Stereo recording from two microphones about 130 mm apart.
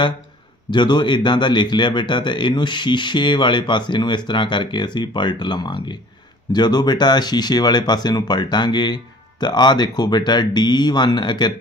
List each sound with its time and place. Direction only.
0.7 s a man's voice: 35° left (ahead or behind)